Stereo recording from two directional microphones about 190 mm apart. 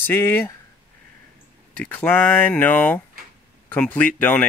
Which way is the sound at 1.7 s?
5° left (ahead or behind).